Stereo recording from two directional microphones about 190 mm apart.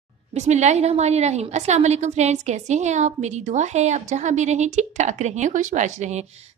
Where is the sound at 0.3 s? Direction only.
40° right (ahead or behind).